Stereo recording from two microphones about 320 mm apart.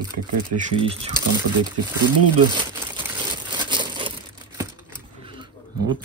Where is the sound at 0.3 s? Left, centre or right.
Right.